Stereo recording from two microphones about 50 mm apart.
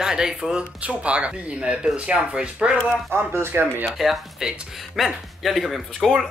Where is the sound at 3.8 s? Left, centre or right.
Centre.